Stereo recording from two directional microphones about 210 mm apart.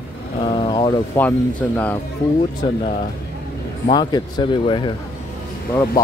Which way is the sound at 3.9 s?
20° left (ahead or behind).